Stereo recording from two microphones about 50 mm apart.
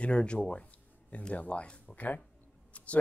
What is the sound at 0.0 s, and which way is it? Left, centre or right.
Speech, left.